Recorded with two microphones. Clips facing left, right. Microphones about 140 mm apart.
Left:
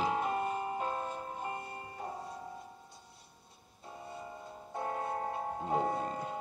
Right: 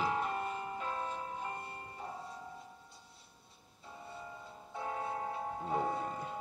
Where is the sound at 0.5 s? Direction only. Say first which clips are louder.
Left 4 dB; 50° left (ahead or behind).